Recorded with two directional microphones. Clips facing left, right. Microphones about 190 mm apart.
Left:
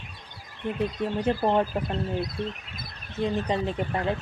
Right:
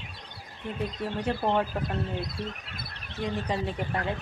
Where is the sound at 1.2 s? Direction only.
10° left (ahead or behind).